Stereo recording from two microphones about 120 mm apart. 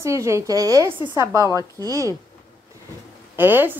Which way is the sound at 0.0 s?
25° right (ahead or behind).